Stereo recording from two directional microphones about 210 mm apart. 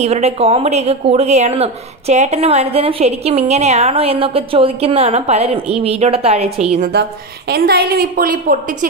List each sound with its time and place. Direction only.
0.0 s a woman's voice: 30° right (ahead or behind)
6.9 s a woman's voice: 50° right (ahead or behind)